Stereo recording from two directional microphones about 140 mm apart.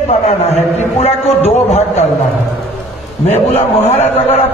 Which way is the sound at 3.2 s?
50° left (ahead or behind).